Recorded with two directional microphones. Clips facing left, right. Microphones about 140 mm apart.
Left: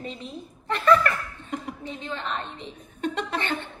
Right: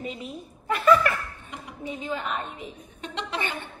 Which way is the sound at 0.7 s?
5° right (ahead or behind).